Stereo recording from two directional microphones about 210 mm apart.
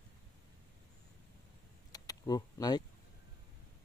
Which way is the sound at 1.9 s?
15° left (ahead or behind).